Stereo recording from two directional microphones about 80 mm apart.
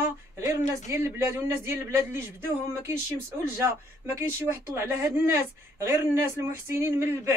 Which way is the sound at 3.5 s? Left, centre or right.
Right.